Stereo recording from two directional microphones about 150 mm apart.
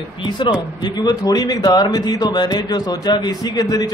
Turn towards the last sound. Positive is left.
turn(degrees=25)  # may be behind; listen again after turning